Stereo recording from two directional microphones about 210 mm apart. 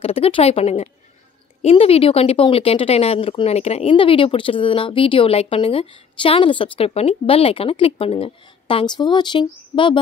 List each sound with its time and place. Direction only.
0.0 s speech: 25° left (ahead or behind)